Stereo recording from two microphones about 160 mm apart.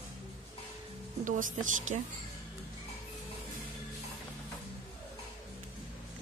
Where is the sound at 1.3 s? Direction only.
55° right (ahead or behind).